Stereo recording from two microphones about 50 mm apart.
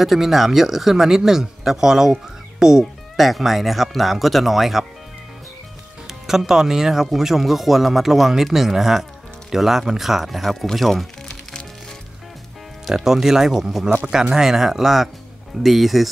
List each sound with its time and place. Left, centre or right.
0.0 s speech: centre
2.6 s music: centre
3.3 s speech: centre
6.0 s speech: centre
12.9 s speech: centre